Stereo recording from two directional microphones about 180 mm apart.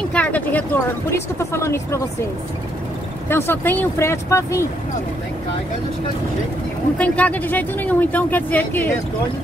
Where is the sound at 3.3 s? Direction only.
15° left (ahead or behind).